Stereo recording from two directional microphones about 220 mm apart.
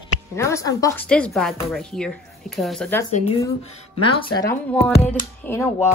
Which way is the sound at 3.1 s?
30° left (ahead or behind).